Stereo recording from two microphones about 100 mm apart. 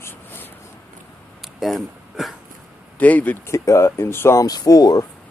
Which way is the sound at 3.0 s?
15° left (ahead or behind).